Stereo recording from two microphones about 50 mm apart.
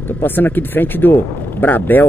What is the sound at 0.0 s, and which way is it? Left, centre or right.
Speech, left.